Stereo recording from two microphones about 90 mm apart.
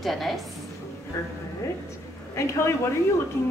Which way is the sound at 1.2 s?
30° left (ahead or behind).